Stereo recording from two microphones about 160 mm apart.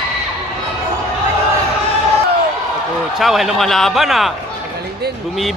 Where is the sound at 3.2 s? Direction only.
Centre (ahead or behind).